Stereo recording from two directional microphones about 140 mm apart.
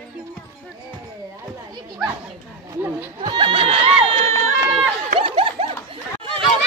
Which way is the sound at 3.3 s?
45° right (ahead or behind).